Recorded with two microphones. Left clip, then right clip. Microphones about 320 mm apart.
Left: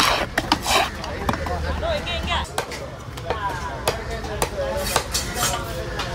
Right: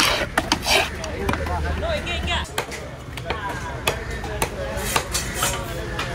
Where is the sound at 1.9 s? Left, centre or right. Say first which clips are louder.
Left 1 dB; left.